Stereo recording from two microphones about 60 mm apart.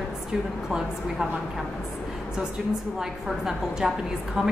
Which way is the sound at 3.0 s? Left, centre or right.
Centre.